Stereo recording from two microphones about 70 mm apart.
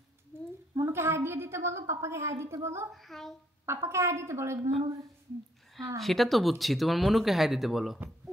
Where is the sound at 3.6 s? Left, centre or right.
Right.